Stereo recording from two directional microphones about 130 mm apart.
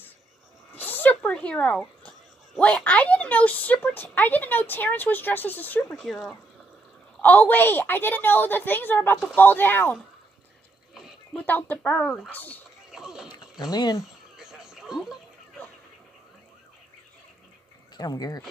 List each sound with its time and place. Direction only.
0.7 s speech: 15° left (ahead or behind)
7.2 s a woman's voice: 15° left (ahead or behind)
11.3 s a woman's voice: 15° left (ahead or behind)
12.9 s a sound: 5° right (ahead or behind)
13.6 s speech: 30° left (ahead or behind)
14.3 s a sound: 5° right (ahead or behind)
17.9 s speech: 30° left (ahead or behind)